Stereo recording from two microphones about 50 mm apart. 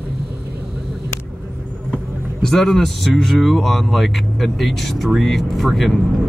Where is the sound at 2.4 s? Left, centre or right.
Centre.